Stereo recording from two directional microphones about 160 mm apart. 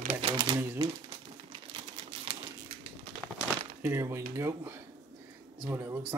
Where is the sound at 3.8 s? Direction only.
15° right (ahead or behind).